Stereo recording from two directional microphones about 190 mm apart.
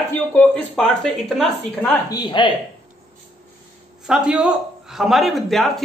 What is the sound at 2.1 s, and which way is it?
Speech, 25° left (ahead or behind).